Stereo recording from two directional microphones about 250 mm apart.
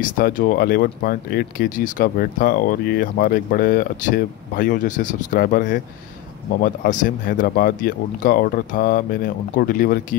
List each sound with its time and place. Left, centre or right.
0.0 s speech: left